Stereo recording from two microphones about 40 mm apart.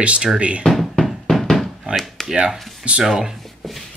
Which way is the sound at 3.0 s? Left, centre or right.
Centre.